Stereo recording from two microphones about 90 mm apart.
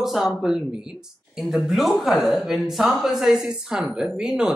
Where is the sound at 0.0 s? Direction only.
5° right (ahead or behind).